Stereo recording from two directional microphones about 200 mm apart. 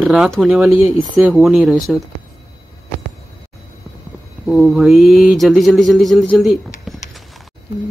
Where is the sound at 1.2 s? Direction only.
Centre (ahead or behind).